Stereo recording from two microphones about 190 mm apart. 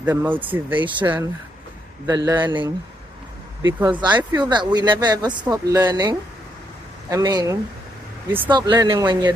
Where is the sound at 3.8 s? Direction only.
25° right (ahead or behind).